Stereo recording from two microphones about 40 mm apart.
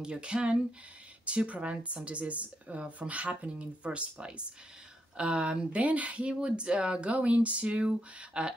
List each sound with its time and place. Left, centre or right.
0.0 s speech: right
5.8 s speech: right